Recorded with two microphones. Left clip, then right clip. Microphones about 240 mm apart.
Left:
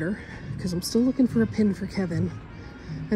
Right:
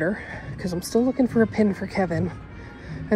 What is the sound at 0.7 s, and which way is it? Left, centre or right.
Speech, left.